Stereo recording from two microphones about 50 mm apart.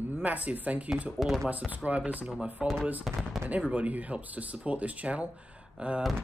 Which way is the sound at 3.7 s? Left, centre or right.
Right.